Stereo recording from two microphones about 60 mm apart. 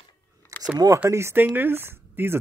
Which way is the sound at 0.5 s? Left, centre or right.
Right.